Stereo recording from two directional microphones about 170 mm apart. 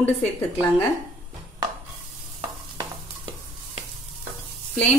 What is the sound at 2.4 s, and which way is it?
Stir, 30° right (ahead or behind).